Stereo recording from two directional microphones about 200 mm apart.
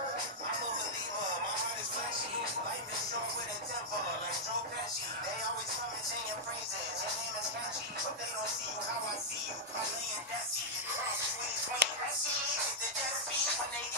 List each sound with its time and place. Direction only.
11.8 s music: 60° right (ahead or behind)